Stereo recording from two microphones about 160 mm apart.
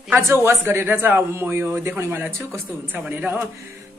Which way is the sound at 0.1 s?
15° right (ahead or behind).